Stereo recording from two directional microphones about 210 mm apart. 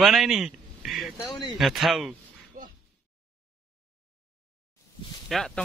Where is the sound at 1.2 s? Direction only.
20° left (ahead or behind).